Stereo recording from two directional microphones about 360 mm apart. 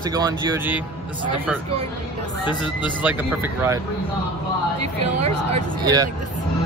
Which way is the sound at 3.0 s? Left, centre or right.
Centre.